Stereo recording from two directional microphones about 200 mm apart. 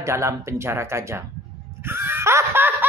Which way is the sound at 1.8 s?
10° right (ahead or behind).